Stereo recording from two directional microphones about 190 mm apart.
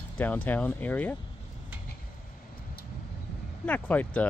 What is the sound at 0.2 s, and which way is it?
Speech, 10° left (ahead or behind).